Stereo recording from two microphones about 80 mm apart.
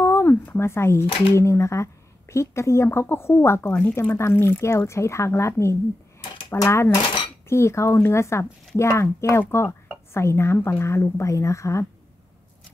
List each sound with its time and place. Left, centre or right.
0.0 s speech: left